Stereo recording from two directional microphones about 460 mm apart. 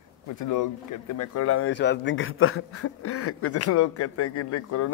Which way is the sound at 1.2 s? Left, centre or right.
Left.